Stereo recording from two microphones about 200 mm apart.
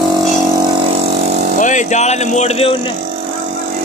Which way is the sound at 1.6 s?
40° left (ahead or behind).